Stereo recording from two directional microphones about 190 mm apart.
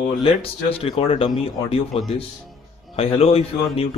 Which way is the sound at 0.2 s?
30° left (ahead or behind).